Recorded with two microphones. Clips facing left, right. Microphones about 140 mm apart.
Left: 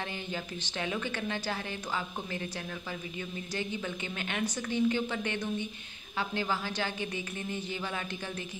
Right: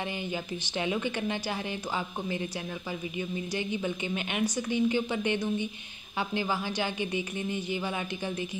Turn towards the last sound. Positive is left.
turn(degrees=-15)  # may be behind; listen again after turning